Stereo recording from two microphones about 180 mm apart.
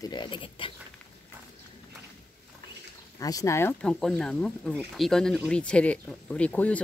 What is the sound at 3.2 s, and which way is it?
Speech, 20° left (ahead or behind).